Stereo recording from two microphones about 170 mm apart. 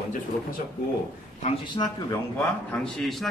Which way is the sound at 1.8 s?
25° left (ahead or behind).